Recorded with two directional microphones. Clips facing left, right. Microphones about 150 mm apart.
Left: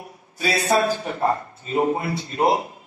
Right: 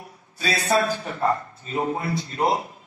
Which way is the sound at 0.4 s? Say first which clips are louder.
Left 2 dB; 20° left (ahead or behind).